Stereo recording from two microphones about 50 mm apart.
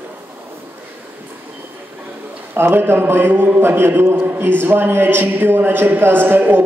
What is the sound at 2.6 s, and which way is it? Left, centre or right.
A man's voice, right.